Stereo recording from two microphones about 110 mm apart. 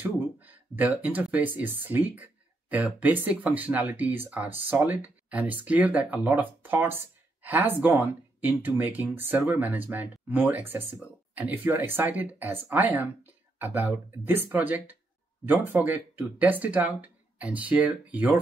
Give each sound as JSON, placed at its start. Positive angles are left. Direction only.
{"t": 0.0, "sound": "speech", "side_deg": -15}